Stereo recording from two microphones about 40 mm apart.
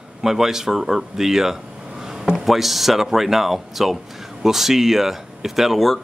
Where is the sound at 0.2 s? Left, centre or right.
Centre.